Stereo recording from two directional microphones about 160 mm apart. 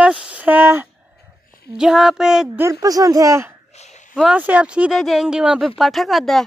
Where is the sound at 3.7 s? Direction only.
45° left (ahead or behind).